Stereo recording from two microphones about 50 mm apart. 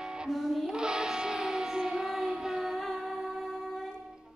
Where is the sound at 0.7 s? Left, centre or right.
Centre.